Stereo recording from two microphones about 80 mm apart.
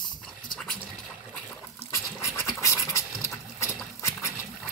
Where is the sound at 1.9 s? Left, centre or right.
Left.